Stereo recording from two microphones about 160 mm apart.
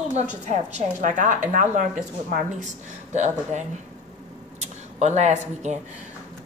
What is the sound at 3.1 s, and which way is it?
A woman's voice, 50° right (ahead or behind).